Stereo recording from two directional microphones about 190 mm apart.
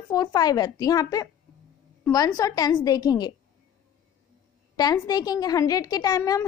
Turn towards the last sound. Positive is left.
turn(degrees=20)  # may be behind; listen again after turning